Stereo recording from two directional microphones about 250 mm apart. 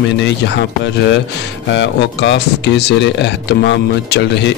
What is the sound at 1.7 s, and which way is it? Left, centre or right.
Speech, left.